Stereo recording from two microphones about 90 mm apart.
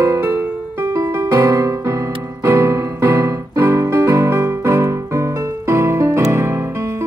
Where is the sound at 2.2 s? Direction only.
30° right (ahead or behind).